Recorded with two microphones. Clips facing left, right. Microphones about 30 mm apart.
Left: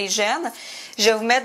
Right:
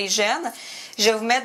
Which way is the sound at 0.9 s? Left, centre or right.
Centre.